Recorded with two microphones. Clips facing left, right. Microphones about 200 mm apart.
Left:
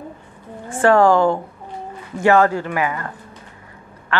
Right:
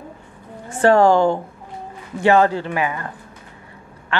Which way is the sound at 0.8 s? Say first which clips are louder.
Even; 25° right (ahead or behind).